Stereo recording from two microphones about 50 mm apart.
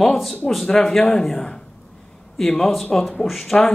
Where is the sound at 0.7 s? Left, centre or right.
Centre.